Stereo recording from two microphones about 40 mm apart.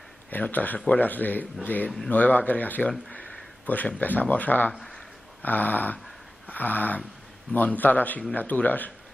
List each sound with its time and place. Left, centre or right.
0.3 s speech: left